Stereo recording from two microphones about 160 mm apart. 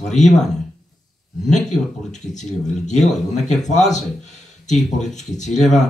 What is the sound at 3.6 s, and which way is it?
Speech, 45° left (ahead or behind).